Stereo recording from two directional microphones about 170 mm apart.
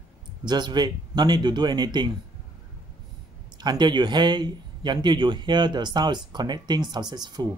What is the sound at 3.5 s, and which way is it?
Speech, 25° right (ahead or behind).